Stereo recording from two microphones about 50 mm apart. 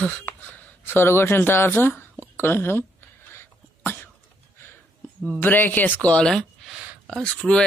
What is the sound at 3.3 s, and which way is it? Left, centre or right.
Cough, left.